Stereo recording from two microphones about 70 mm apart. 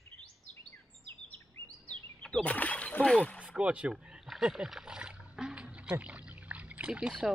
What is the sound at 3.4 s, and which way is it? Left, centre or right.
Speech, centre.